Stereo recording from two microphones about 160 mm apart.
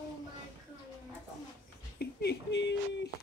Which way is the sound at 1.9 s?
90° left.